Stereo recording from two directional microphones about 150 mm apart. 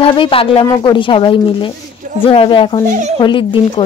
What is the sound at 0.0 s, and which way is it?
Speech, 35° left (ahead or behind).